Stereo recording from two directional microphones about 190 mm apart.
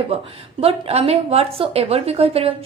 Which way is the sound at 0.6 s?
30° right (ahead or behind).